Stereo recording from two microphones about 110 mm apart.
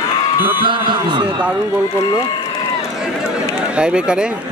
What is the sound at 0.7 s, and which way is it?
Speech, 45° right (ahead or behind).